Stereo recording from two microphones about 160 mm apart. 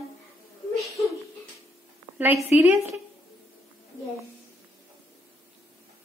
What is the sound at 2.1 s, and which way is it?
Speech, 10° right (ahead or behind).